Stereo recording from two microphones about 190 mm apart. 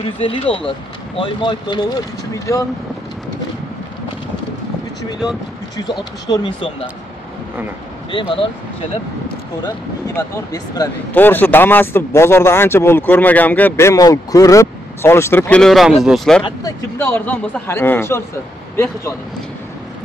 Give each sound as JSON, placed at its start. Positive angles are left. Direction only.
{"t": 0.0, "sound": "speech", "side_deg": 30}
{"t": 5.8, "sound": "speech", "side_deg": 20}
{"t": 8.1, "sound": "speech", "side_deg": 25}
{"t": 10.1, "sound": "speech", "side_deg": 20}
{"t": 16.4, "sound": "speech", "side_deg": 15}